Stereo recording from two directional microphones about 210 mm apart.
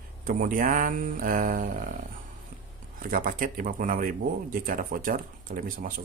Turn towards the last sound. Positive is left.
turn(degrees=-40)  # may be behind; listen again after turning